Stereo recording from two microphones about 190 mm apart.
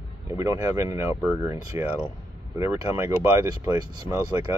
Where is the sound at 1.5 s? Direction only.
15° right (ahead or behind).